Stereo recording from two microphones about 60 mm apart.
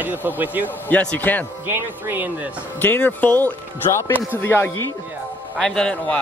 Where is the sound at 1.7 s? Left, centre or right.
Right.